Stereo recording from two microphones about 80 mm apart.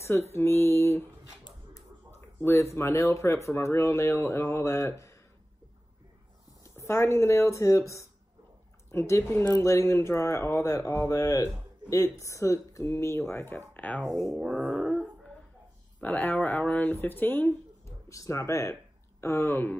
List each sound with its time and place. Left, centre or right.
0.0 s speech: left
2.0 s speech: left
6.6 s speech: left
14.2 s a sound: centre
14.7 s dog: centre
16.0 s speech: centre
17.8 s speech: left